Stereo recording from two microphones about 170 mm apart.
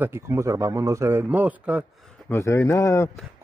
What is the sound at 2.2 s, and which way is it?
Speech, 15° left (ahead or behind).